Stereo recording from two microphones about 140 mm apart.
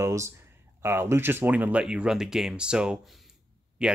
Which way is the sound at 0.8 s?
20° right (ahead or behind).